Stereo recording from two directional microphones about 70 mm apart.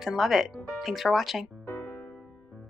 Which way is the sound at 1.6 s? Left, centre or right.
Left.